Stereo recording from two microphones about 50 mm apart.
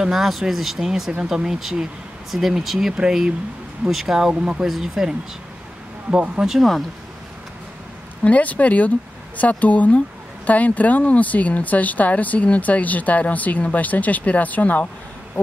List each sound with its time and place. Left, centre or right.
0.0 s speech: centre
6.0 s speech: right
6.5 s speech: centre
8.2 s speech: left